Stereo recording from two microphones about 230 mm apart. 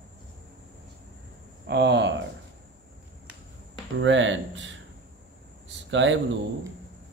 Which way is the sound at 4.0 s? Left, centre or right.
Right.